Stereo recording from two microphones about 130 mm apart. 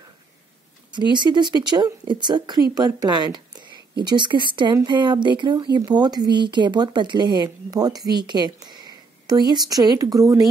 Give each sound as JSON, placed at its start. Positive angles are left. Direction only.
{"t": 1.1, "sound": "a woman's voice", "side_deg": -35}